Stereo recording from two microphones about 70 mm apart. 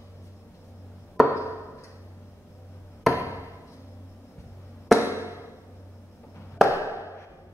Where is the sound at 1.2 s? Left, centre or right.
Left.